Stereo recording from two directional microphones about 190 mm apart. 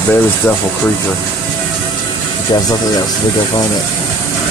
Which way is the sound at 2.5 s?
20° left (ahead or behind).